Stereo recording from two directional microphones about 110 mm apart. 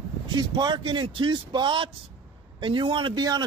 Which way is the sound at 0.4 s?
40° right (ahead or behind).